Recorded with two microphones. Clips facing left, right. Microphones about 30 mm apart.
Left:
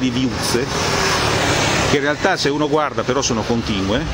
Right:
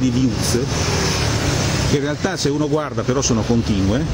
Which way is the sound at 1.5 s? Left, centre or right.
Left.